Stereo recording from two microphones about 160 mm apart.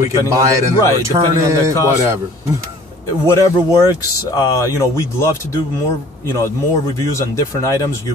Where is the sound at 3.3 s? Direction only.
20° left (ahead or behind).